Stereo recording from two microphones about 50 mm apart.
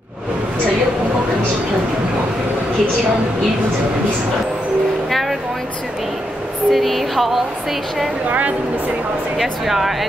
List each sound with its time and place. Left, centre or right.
6.7 s speech: centre
8.3 s a woman's voice: right
9.4 s speech: centre